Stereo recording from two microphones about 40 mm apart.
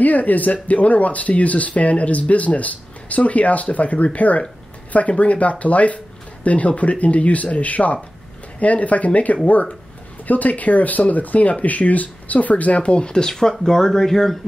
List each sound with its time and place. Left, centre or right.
0.0 s speech: left; by 14.3 s centre